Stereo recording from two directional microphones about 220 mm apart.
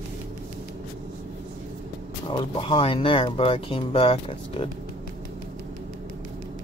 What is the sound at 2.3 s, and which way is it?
Speech, 25° left (ahead or behind).